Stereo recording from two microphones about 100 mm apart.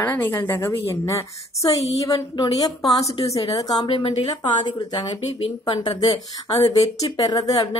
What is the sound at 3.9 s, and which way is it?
Speech, 75° left (ahead or behind).